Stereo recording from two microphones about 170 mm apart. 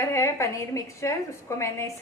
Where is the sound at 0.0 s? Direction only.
15° left (ahead or behind).